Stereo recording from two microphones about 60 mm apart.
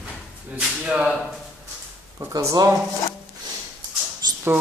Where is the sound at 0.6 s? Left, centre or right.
Centre.